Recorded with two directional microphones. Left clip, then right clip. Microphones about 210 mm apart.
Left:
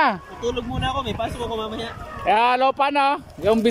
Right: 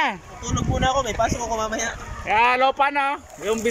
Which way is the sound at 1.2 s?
Centre (ahead or behind).